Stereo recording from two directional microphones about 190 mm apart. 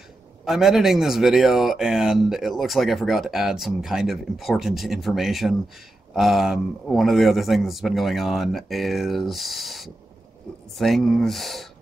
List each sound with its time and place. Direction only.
0.5 s speech: centre (ahead or behind)